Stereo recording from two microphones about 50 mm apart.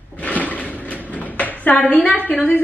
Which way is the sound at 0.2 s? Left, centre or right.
Left.